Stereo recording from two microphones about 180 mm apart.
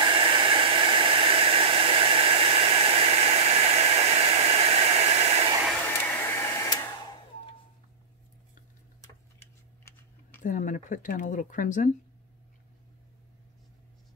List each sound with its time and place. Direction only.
0.0 s hair dryer: 30° right (ahead or behind)
5.9 s hair dryer: 10° left (ahead or behind)
9.0 s typing: 15° left (ahead or behind)
10.4 s speech: 45° left (ahead or behind)